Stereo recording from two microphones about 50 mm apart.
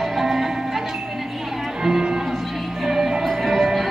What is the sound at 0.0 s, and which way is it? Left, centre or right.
Music, centre.